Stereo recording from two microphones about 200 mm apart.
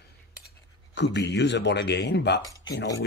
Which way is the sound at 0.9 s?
60° left (ahead or behind).